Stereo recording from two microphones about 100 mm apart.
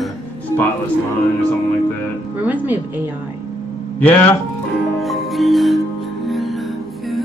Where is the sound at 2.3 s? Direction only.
15° right (ahead or behind).